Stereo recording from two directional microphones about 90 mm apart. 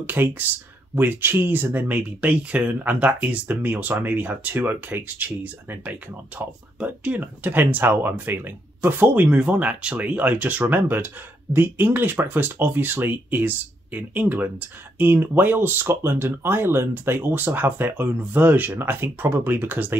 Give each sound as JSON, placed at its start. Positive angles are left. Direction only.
{"t": 0.0, "sound": "speech", "side_deg": -20}